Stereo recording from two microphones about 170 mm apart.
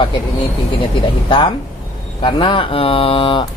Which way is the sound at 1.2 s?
25° left (ahead or behind).